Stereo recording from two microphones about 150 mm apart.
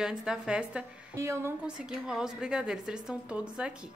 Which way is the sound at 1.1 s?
20° right (ahead or behind).